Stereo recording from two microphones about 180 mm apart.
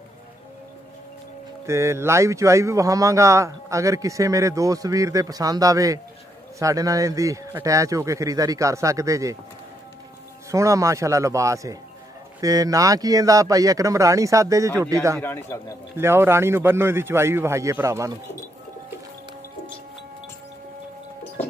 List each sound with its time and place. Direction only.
1.7 s a man's voice: 15° right (ahead or behind)
10.5 s a man's voice: 15° right (ahead or behind)
15.1 s a man's voice: 10° left (ahead or behind)
16.0 s a man's voice: 15° right (ahead or behind)